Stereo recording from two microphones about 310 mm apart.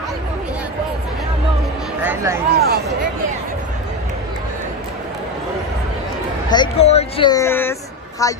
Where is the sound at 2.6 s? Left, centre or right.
Right.